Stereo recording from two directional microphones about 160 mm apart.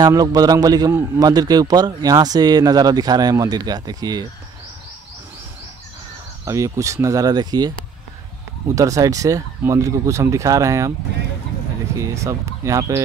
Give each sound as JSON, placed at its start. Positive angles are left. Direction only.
{"t": 0.0, "sound": "a man's voice", "side_deg": -25}
{"t": 6.4, "sound": "a man's voice", "side_deg": -20}
{"t": 8.7, "sound": "a man's voice", "side_deg": -20}
{"t": 12.0, "sound": "a man's voice", "side_deg": -20}